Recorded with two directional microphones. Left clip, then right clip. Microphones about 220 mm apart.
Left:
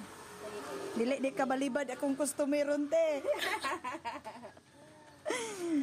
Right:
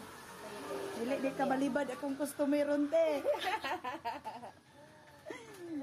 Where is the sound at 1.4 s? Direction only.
45° left (ahead or behind).